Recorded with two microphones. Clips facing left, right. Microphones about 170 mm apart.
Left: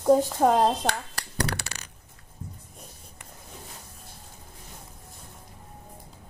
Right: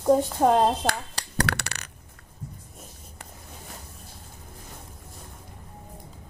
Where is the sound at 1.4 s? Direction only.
65° right (ahead or behind).